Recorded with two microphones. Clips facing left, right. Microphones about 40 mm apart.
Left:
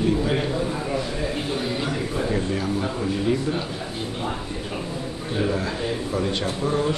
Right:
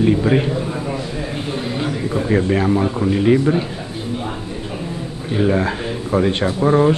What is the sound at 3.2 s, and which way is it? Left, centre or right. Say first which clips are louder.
Speech: right 10 dB; right.